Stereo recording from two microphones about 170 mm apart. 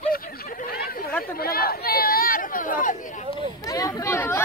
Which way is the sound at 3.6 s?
20° left (ahead or behind).